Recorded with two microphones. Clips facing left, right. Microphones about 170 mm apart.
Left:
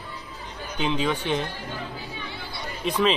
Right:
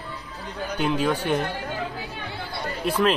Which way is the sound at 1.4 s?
55° right (ahead or behind).